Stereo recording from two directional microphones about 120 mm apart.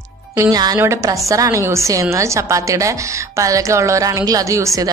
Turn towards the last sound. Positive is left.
turn(degrees=-25)  # may be behind; listen again after turning